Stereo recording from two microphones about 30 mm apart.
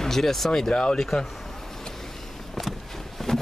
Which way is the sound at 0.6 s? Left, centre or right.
Left.